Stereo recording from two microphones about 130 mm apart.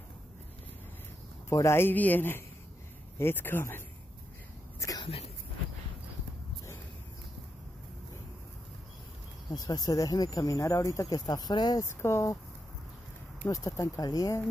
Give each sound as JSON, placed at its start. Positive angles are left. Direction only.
{"t": 1.5, "sound": "speech", "side_deg": 20}
{"t": 4.7, "sound": "a sound", "side_deg": 25}
{"t": 9.5, "sound": "speech", "side_deg": 30}
{"t": 11.8, "sound": "speech", "side_deg": 20}
{"t": 13.5, "sound": "speech", "side_deg": 25}